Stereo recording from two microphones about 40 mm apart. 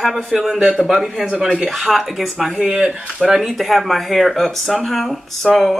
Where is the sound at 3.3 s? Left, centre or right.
Centre.